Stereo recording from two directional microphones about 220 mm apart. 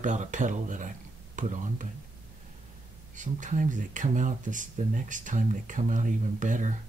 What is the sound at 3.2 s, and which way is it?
Speech, 35° right (ahead or behind).